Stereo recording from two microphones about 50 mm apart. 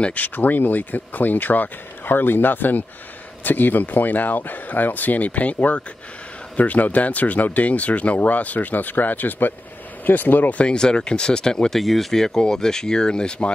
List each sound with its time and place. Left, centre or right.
0.0 s speech: left
10.6 s speech: centre
11.8 s speech: centre